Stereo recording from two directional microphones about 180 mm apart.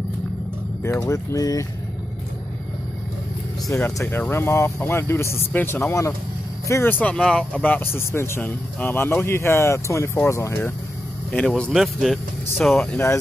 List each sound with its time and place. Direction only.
0.8 s speech: 15° left (ahead or behind)
3.6 s speech: 15° left (ahead or behind)